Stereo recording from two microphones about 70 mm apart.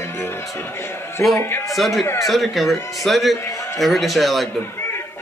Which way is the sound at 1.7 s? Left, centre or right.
Centre.